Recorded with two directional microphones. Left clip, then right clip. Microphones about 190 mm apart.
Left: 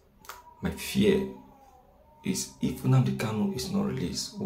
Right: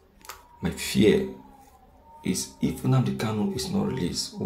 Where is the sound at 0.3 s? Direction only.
10° right (ahead or behind).